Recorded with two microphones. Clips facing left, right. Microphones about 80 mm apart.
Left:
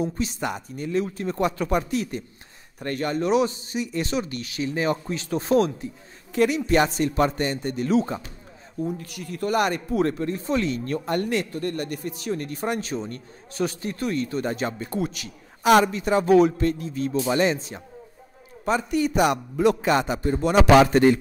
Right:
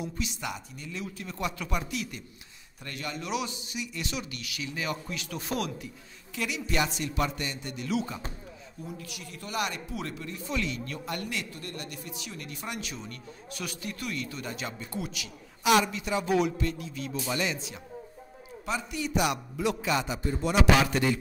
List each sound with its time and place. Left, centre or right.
0.0 s a man's voice: left